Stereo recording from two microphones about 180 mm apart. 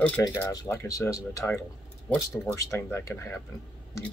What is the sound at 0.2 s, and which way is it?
Speech, 20° left (ahead or behind).